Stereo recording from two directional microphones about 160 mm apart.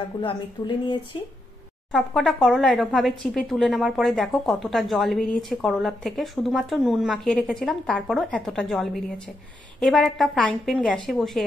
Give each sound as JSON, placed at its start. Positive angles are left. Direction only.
{"t": 0.2, "sound": "speech", "side_deg": 30}
{"t": 1.9, "sound": "speech", "side_deg": 0}